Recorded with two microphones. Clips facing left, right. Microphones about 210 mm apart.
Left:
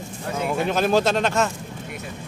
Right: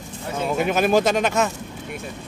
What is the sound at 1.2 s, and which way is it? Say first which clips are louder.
Speech: right 1 dB; 5° right (ahead or behind).